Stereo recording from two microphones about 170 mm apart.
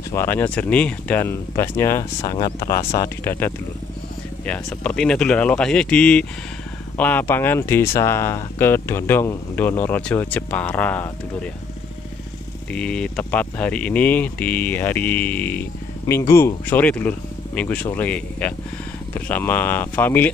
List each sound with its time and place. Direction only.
0.1 s speech: 15° left (ahead or behind)
12.7 s speech: 5° left (ahead or behind)